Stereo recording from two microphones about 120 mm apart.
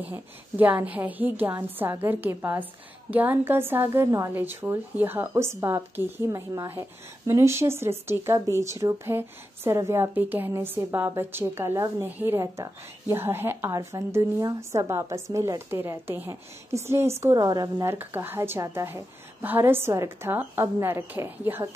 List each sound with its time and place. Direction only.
0.0 s a woman's voice: 15° right (ahead or behind); by 17.8 s 30° right (ahead or behind)
17.8 s speech: 15° right (ahead or behind)